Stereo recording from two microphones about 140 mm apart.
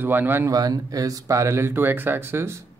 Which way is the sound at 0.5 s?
25° right (ahead or behind).